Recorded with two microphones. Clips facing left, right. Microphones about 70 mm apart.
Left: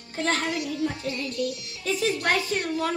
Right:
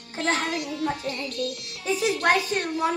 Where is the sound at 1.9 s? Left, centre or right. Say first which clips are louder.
Right 2 dB; right.